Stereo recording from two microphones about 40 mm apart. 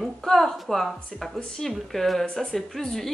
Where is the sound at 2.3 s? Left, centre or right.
Centre.